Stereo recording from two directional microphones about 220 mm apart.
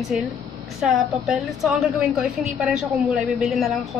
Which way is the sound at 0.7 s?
Centre (ahead or behind).